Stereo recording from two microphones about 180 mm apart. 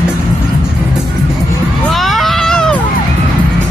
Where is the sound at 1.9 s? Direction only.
Centre (ahead or behind).